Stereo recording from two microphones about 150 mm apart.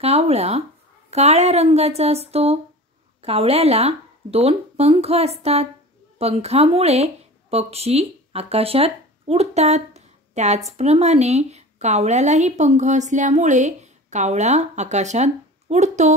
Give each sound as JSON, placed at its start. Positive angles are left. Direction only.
{"t": 0.0, "sound": "a woman's voice", "side_deg": -45}